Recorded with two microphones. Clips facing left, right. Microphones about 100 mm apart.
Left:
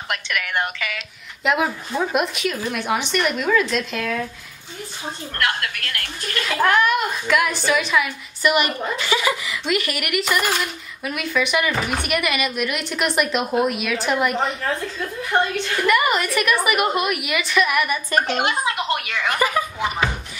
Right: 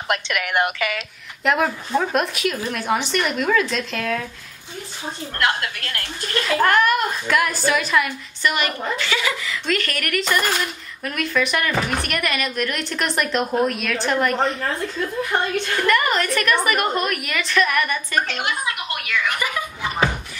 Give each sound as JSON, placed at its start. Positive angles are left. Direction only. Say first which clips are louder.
{"t": 0.1, "sound": "a woman's voice", "louder": "right 3 dB", "side_deg": -25}
{"t": 0.6, "sound": "speech", "louder": "right 4 dB", "side_deg": -55}
{"t": 1.4, "sound": "a woman's voice", "louder": "right 1 dB", "side_deg": 0}
{"t": 5.4, "sound": "a woman's voice", "louder": "right 2 dB", "side_deg": -25}
{"t": 6.4, "sound": "a woman's voice", "louder": "right 1 dB", "side_deg": 0}
{"t": 8.4, "sound": "a woman's voice", "louder": "left 3 dB", "side_deg": 15}
{"t": 15.9, "sound": "a woman's voice", "louder": "left 1 dB", "side_deg": 10}
{"t": 18.2, "sound": "speech", "louder": "left 4 dB", "side_deg": 20}